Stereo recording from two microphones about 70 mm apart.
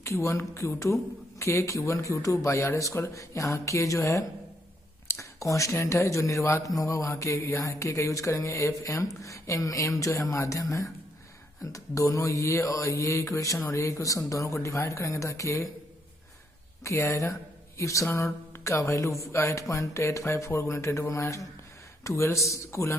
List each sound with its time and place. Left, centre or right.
0.0 s speech: left
16.8 s speech: left